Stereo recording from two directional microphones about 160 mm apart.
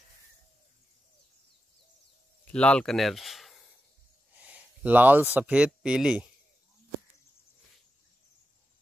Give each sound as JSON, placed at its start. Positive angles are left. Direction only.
{"t": 2.5, "sound": "speech", "side_deg": 5}